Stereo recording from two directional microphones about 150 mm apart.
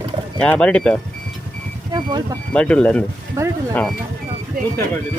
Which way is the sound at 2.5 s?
5° left (ahead or behind).